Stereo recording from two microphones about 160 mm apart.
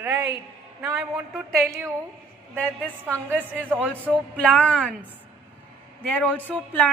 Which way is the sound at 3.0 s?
15° right (ahead or behind).